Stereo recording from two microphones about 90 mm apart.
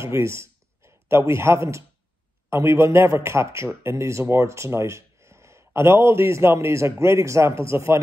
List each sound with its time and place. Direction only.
0.0 s a man's voice: 30° right (ahead or behind)